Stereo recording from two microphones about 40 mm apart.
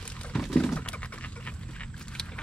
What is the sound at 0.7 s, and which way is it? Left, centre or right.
Typing, left.